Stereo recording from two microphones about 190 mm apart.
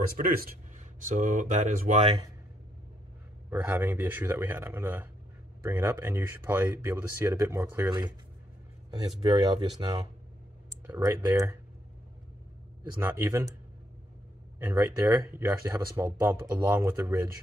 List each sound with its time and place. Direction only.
0.2 s speech: 50° right (ahead or behind)
3.4 s speech: 10° right (ahead or behind)
9.2 s speech: 25° right (ahead or behind)
13.0 s speech: 15° right (ahead or behind)
14.6 s speech: 15° right (ahead or behind)